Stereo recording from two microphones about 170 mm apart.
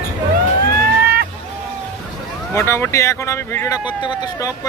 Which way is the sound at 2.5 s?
15° left (ahead or behind).